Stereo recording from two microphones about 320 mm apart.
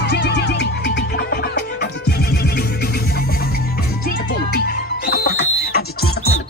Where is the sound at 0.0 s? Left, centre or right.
Left.